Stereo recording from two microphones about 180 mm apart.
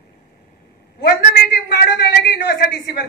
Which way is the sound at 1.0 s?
60° left (ahead or behind).